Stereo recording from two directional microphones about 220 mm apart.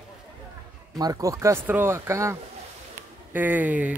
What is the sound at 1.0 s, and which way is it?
Speech, 15° right (ahead or behind).